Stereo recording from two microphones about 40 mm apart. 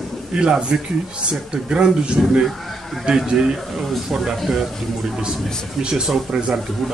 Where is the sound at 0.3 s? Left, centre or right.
Right.